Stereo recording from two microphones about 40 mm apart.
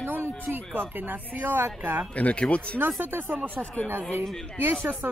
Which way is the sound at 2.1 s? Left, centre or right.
Left.